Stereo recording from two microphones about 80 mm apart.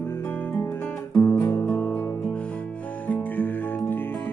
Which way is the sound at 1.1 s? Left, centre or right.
Left.